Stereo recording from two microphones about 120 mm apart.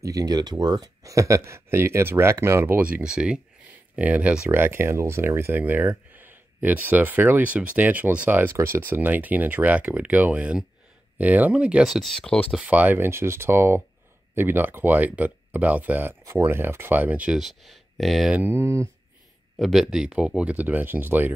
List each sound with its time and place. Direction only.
0.0 s speech: 30° right (ahead or behind); by 12.5 s 5° left (ahead or behind)
12.5 s speech: 10° right (ahead or behind)
18.3 s speech: 15° right (ahead or behind)
19.6 s speech: centre (ahead or behind)